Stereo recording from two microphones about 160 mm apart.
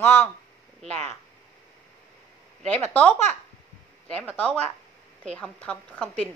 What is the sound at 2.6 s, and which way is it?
A woman's voice, 10° left (ahead or behind).